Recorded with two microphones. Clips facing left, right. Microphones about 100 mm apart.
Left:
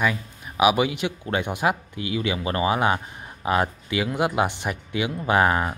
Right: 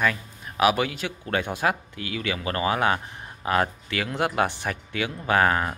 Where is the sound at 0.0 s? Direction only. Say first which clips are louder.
Left 1 dB; 10° left (ahead or behind).